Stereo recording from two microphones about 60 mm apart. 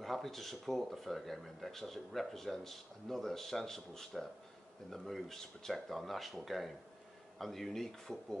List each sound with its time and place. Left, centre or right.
0.0 s speech: centre